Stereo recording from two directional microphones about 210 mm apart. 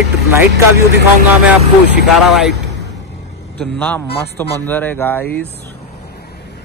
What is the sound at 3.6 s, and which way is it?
Speech, 10° left (ahead or behind).